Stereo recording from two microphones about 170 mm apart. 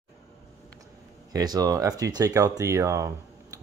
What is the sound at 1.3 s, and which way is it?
Speech, 20° right (ahead or behind).